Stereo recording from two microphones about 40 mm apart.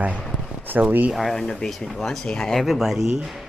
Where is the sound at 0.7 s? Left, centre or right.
Right.